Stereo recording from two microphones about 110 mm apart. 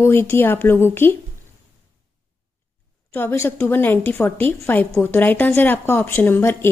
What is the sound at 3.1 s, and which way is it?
A woman's voice, 20° left (ahead or behind).